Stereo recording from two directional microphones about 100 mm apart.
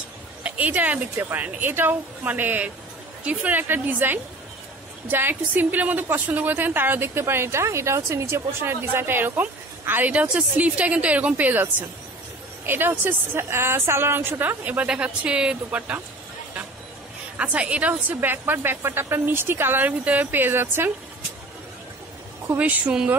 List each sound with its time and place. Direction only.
0.4 s a woman's voice: 15° right (ahead or behind)
12.6 s a woman's voice: 20° right (ahead or behind)
17.4 s a woman's voice: 15° right (ahead or behind)
22.6 s speech: 15° right (ahead or behind)